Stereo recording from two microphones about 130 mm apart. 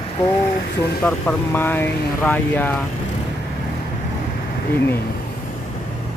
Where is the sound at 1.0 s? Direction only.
15° left (ahead or behind).